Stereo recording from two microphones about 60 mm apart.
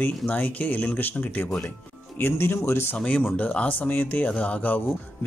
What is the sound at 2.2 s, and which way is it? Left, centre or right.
Speech, left.